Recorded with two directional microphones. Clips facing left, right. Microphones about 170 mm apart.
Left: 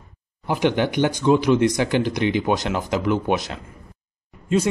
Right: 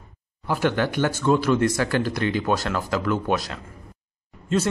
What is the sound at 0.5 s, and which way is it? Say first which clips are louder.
Speech: left 2 dB; 20° left (ahead or behind).